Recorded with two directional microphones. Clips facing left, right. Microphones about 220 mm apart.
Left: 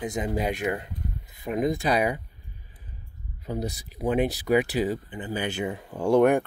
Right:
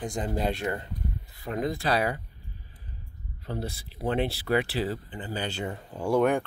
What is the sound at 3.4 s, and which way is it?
Speech, 15° left (ahead or behind).